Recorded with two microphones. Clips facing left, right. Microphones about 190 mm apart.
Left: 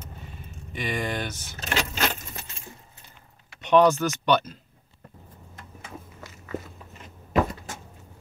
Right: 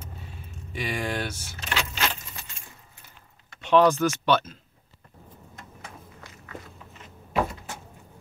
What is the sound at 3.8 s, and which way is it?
Speech, 10° left (ahead or behind).